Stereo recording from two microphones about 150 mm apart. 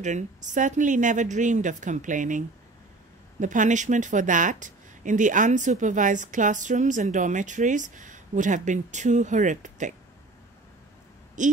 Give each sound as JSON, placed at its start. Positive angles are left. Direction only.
{"t": 0.0, "sound": "speech", "side_deg": -55}
{"t": 11.4, "sound": "speech", "side_deg": -55}